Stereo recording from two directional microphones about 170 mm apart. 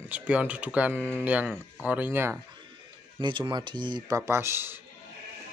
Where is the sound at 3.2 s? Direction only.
30° right (ahead or behind).